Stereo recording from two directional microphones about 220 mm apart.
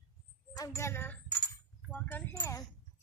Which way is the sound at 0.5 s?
15° left (ahead or behind).